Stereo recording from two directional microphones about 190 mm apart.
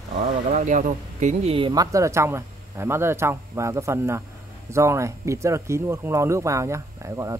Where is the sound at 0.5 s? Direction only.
40° right (ahead or behind).